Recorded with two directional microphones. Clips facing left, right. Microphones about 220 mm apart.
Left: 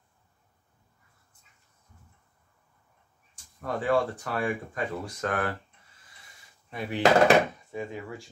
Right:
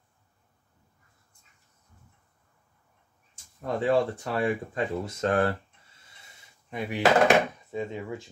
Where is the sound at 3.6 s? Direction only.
25° right (ahead or behind).